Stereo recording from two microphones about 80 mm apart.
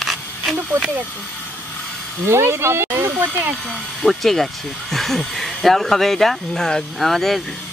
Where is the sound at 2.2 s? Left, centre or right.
Right.